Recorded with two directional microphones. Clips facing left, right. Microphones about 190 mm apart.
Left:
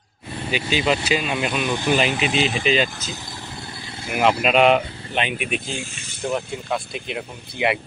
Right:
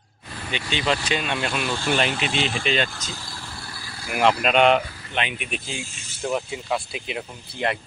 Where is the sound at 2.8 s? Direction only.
20° left (ahead or behind).